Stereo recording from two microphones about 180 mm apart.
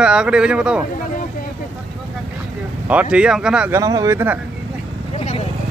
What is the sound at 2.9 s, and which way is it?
Speech, 5° right (ahead or behind).